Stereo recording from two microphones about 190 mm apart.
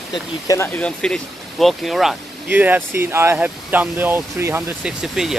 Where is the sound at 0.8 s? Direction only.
5° left (ahead or behind).